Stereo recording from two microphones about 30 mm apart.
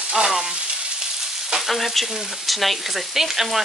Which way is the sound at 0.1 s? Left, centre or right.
Centre.